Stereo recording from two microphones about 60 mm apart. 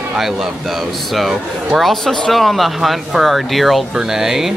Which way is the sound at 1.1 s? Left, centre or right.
Centre.